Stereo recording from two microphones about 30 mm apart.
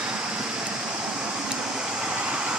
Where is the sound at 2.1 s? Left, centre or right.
Right.